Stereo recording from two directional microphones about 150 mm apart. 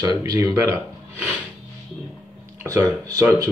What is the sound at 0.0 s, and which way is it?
Speech, 25° right (ahead or behind).